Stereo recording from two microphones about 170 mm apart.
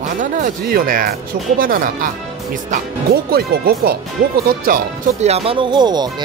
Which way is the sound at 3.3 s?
65° right (ahead or behind).